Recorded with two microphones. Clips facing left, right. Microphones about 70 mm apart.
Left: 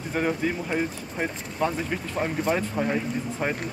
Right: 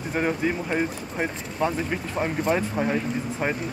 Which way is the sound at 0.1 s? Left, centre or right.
Centre.